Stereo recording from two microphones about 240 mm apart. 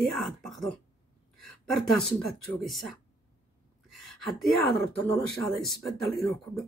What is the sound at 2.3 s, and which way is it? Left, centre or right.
Speech, centre.